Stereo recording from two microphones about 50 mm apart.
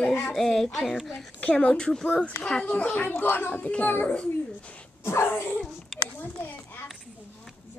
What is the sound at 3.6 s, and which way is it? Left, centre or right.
Speech, left.